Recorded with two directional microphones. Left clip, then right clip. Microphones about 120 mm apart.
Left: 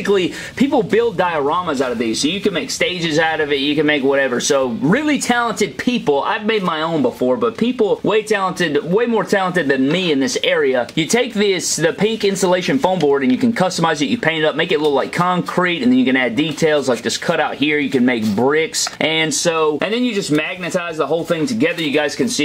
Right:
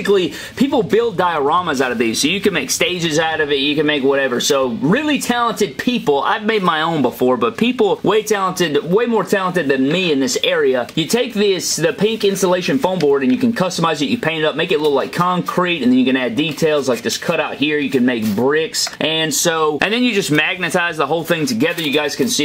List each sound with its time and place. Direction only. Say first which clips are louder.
0.1 s speech: right 1 dB; 15° right (ahead or behind); by 2.9 s 35° right (ahead or behind)
3.7 s speech: even; 10° right (ahead or behind)
5.9 s speech: even; 15° right (ahead or behind)
6.5 s speech: right 2 dB; 35° right (ahead or behind)
8.3 s speech: right 1 dB; 20° right (ahead or behind)
10.5 s speech: left 1 dB; 15° right (ahead or behind); by 18.6 s 5° left (ahead or behind)
19.6 s speech: right 1 dB; 35° right (ahead or behind)